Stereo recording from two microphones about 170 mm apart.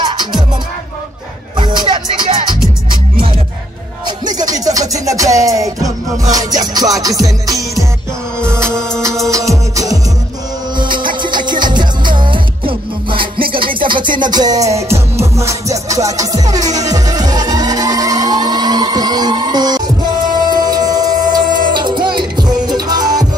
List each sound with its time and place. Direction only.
1.6 s music: 25° right (ahead or behind)
4.3 s music: 20° right (ahead or behind)
11.0 s music: 25° right (ahead or behind)